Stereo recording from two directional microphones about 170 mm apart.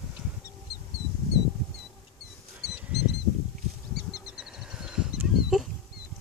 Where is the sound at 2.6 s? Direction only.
75° left (ahead or behind).